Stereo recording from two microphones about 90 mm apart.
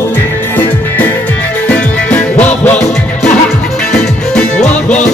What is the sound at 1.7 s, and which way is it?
Music, 15° left (ahead or behind).